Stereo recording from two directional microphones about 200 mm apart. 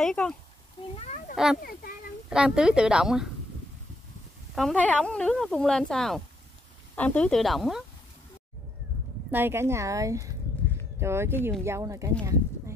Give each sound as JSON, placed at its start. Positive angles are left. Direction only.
{"t": 0.0, "sound": "speech", "side_deg": 5}
{"t": 0.9, "sound": "a child's voice", "side_deg": 35}
{"t": 1.3, "sound": "speech", "side_deg": 0}
{"t": 1.6, "sound": "a child's voice", "side_deg": 45}
{"t": 2.2, "sound": "speech", "side_deg": -5}
{"t": 4.6, "sound": "speech", "side_deg": 5}
{"t": 9.3, "sound": "speech", "side_deg": -10}